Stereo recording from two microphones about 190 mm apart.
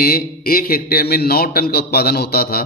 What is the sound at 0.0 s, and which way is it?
A man's voice, 50° left (ahead or behind).